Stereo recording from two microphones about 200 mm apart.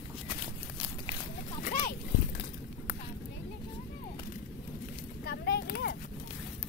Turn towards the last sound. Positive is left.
turn(degrees=55)  # may be behind; listen again after turning